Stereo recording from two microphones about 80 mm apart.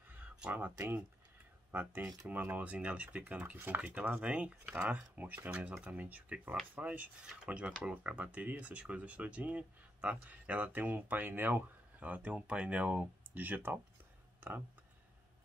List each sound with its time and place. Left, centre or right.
0.4 s speech: centre